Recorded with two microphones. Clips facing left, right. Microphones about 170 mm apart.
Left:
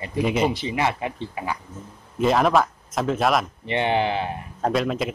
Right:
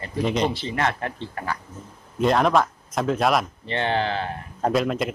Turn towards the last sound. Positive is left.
turn(degrees=0)  # may be behind; listen again after turning